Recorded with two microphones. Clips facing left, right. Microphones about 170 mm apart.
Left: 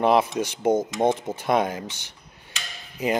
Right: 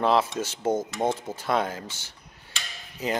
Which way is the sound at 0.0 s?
15° left (ahead or behind).